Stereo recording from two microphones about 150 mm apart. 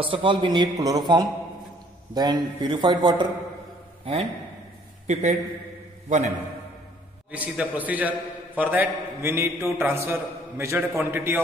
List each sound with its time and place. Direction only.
0.0 s a man's voice: 35° right (ahead or behind)
7.2 s a man's voice: 10° right (ahead or behind)